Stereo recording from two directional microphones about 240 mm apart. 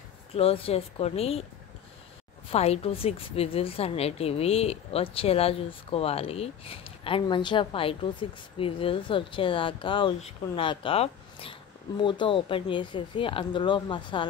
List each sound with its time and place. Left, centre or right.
0.3 s a woman's voice: left
2.5 s a woman's voice: left